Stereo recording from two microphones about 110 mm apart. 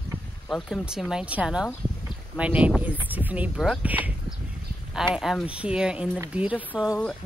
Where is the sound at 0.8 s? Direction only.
5° right (ahead or behind).